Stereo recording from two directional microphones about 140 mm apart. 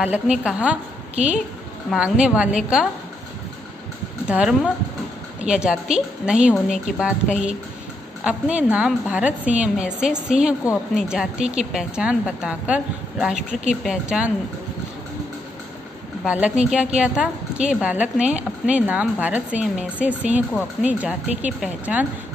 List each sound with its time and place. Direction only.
0.0 s a woman's voice: 10° right (ahead or behind)
4.3 s a woman's voice: 5° right (ahead or behind)
13.4 s speech: 60° right (ahead or behind)
13.8 s a woman's voice: 5° right (ahead or behind)
16.3 s a woman's voice: 10° right (ahead or behind)